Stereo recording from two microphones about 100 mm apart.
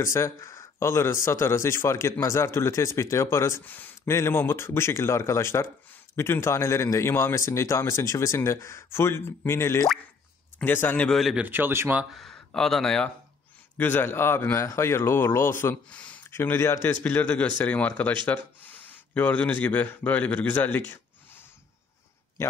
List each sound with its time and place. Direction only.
0.0 s speech: 30° left (ahead or behind)
11.1 s speech: centre (ahead or behind)
11.3 s speech: 20° right (ahead or behind)
12.0 s speech: centre (ahead or behind)
13.7 s speech: 20° left (ahead or behind)
15.7 s speech: 10° left (ahead or behind)
16.3 s speech: 25° left (ahead or behind)
17.0 s speech: 15° left (ahead or behind)